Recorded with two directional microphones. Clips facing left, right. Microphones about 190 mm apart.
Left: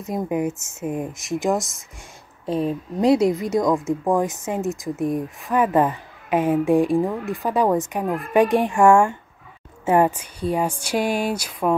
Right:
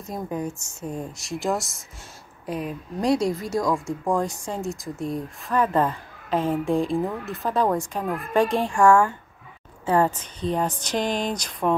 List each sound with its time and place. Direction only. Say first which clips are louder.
0.0 s speech: left 6 dB; 20° left (ahead or behind)
1.6 s speech: left 4 dB; centre (ahead or behind)
2.4 s speech: left 7 dB; 25° left (ahead or behind); by 11.7 s 5° left (ahead or behind)